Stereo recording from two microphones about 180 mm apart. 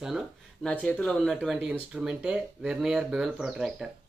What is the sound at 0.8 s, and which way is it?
Speech, 5° left (ahead or behind).